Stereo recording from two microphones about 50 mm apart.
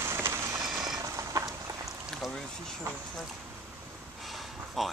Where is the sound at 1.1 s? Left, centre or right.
Right.